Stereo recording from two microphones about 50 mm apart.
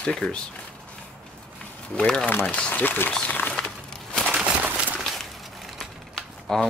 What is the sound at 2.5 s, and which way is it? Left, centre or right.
Speech, left.